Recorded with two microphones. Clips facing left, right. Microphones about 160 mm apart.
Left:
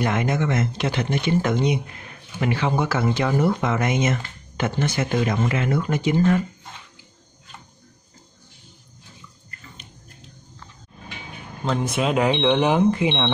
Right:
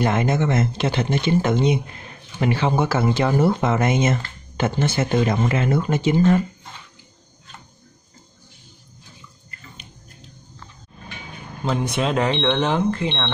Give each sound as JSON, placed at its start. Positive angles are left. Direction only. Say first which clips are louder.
{"t": 0.0, "sound": "speech", "louder": "right 2 dB", "side_deg": -30}
{"t": 11.6, "sound": "speech", "louder": "even", "side_deg": 0}